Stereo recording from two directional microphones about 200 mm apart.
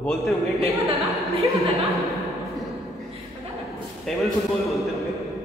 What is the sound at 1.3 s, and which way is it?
Speech, 30° right (ahead or behind).